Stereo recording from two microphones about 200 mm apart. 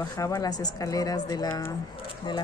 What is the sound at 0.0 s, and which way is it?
Speech, 15° left (ahead or behind).